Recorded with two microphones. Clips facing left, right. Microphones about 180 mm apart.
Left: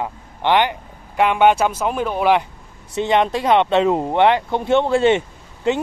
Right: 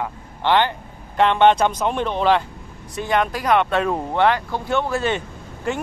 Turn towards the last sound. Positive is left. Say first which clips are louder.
# left 5 dB
turn(degrees=20)  # may be behind; listen again after turning